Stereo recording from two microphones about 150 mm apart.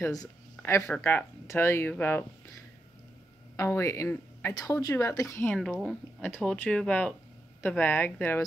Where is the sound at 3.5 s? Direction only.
20° left (ahead or behind).